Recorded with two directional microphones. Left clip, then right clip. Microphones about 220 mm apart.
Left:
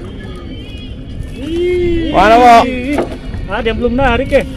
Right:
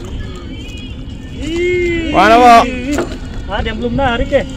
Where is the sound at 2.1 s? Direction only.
Centre (ahead or behind).